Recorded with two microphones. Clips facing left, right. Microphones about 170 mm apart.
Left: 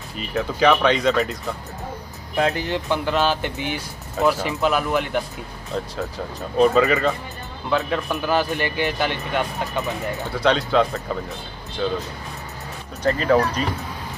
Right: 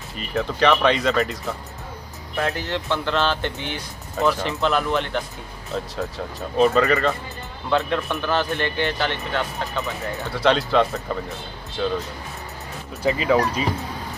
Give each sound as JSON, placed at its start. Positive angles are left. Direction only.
{"t": 0.3, "sound": "speech", "side_deg": 0}
{"t": 2.3, "sound": "speech", "side_deg": 20}
{"t": 10.3, "sound": "speech", "side_deg": 0}
{"t": 13.0, "sound": "speech", "side_deg": -5}